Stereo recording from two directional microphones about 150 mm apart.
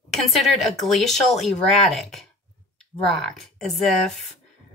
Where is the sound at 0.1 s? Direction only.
Centre (ahead or behind).